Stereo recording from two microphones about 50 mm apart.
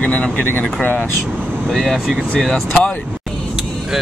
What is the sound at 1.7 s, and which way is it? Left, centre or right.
Speech, centre.